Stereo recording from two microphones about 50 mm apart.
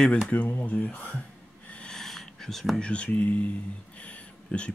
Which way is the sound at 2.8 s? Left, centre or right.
Left.